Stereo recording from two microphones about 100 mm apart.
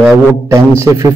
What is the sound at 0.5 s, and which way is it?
Speech, 30° right (ahead or behind).